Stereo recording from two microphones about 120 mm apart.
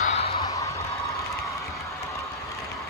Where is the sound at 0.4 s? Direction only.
25° left (ahead or behind).